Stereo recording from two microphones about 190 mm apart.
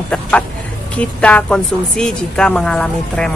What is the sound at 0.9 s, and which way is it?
A woman's voice, 5° left (ahead or behind).